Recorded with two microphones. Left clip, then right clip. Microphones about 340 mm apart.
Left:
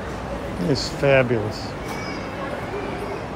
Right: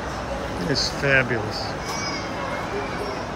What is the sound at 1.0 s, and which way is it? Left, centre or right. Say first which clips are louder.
Speech: left 3 dB; centre.